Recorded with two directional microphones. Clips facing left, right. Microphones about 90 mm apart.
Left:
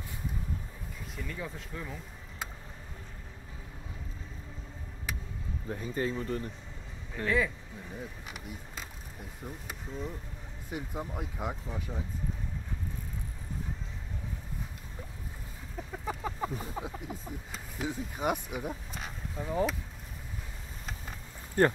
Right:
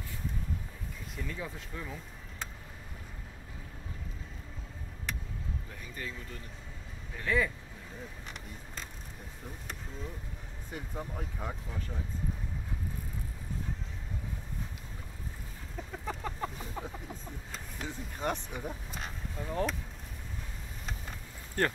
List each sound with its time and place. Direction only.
1.1 s speech: centre (ahead or behind)
5.7 s speech: 35° left (ahead or behind)
7.2 s speech: centre (ahead or behind)
10.7 s speech: 10° left (ahead or behind)
15.9 s a sound: 10° left (ahead or behind)
16.7 s speech: 5° left (ahead or behind)
21.6 s speech: 15° left (ahead or behind)